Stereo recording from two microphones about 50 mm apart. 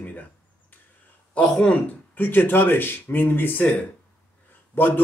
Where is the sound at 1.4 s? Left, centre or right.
Centre.